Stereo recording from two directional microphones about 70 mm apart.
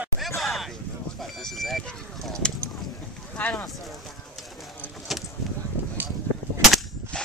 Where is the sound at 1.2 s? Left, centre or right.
Centre.